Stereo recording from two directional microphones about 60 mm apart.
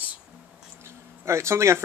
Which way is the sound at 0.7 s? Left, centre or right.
Right.